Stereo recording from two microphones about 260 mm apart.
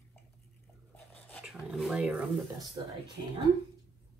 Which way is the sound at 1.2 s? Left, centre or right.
Centre.